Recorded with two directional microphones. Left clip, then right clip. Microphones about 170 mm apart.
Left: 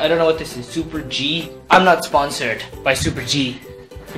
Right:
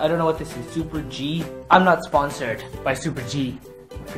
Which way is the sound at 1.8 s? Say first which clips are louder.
Left 4 dB; 5° right (ahead or behind).